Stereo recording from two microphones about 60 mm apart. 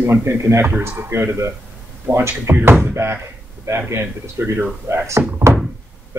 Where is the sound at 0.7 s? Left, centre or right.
Right.